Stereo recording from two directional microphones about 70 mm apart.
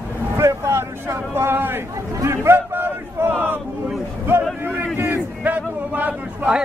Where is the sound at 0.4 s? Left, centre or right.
Right.